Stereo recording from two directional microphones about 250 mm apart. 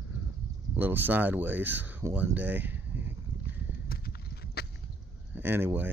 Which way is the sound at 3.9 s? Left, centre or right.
Left.